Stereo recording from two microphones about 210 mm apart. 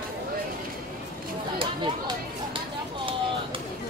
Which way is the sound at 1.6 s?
25° right (ahead or behind).